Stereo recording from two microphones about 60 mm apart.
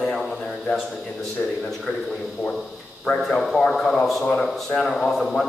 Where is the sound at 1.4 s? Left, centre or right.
Centre.